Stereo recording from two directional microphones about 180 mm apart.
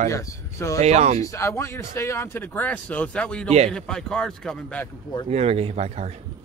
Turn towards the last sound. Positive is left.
turn(degrees=-35)  # may be behind; listen again after turning